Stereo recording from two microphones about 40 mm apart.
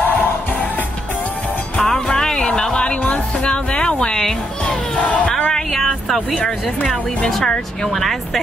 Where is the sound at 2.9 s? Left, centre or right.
Left.